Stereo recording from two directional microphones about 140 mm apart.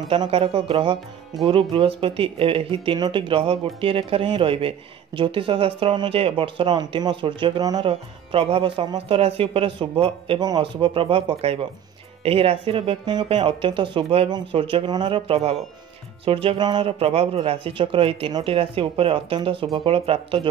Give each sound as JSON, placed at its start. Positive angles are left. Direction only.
{"t": 0.1, "sound": "speech", "side_deg": -40}
{"t": 7.9, "sound": "speech", "side_deg": -40}